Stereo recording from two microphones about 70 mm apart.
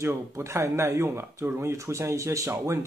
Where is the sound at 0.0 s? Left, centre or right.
Right.